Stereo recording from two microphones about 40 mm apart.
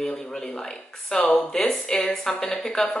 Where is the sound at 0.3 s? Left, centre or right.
Centre.